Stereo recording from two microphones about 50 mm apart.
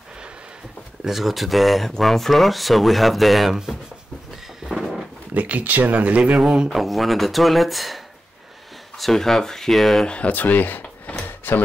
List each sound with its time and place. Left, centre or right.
1.0 s speech: centre
4.6 s a sound: centre
5.3 s speech: right
6.3 s speech: centre
6.7 s speech: centre
10.0 s speech: left
11.2 s a sound: left